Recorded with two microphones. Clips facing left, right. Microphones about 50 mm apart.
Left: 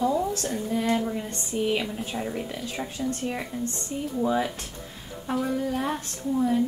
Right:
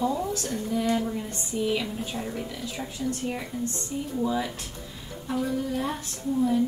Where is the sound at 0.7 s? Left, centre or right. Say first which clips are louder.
Even; left.